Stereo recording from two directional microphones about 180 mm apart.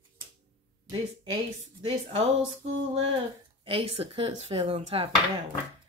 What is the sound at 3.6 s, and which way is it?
Speech, 30° right (ahead or behind).